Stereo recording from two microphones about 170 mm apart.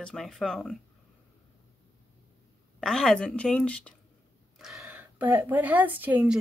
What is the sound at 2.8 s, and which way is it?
A woman's voice, 5° left (ahead or behind).